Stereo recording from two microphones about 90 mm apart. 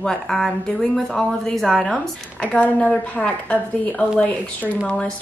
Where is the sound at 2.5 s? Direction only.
15° left (ahead or behind).